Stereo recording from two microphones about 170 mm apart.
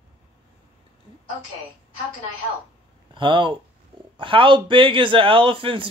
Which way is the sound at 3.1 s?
30° right (ahead or behind).